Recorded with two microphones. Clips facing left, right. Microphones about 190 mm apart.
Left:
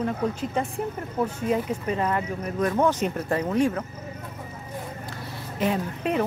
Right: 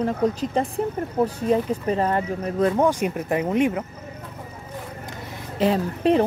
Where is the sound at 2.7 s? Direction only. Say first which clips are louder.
Right 2 dB; 15° right (ahead or behind).